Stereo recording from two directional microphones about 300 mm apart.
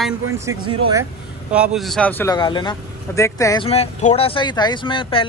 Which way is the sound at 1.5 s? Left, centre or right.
Centre.